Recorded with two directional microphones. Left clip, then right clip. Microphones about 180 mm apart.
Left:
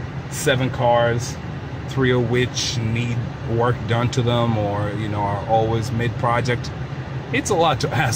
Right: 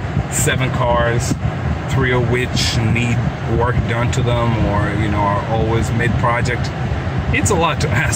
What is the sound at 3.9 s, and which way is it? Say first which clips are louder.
Speech: right 2 dB; 20° left (ahead or behind).